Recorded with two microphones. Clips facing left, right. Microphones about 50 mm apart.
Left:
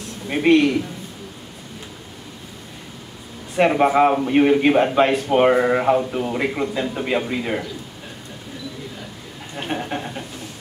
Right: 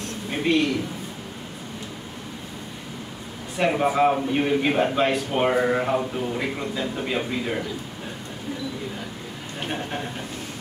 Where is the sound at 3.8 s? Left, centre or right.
Left.